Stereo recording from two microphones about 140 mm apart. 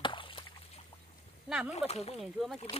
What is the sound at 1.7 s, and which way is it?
Speech, 50° left (ahead or behind).